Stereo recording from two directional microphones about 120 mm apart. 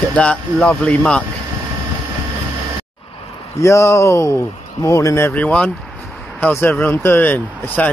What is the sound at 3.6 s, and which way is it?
Speech, 25° left (ahead or behind).